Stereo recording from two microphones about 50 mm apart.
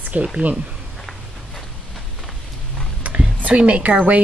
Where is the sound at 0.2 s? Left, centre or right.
Right.